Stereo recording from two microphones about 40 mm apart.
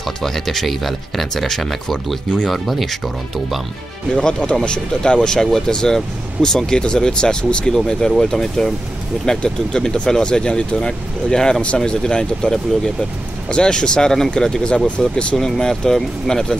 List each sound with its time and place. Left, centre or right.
0.2 s speech: centre
4.1 s speech: left